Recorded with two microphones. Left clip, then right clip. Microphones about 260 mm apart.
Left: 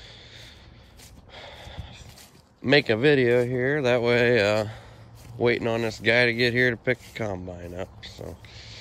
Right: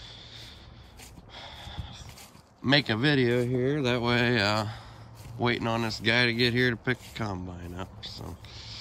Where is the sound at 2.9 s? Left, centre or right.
Centre.